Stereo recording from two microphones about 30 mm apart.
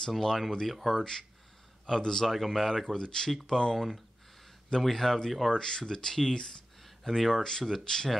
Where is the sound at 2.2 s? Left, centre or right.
Centre.